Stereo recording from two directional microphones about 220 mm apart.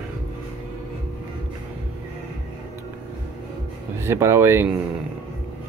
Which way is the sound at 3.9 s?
10° right (ahead or behind).